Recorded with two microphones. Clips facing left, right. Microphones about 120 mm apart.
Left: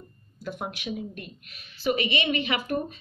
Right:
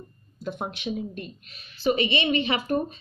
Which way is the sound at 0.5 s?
25° right (ahead or behind).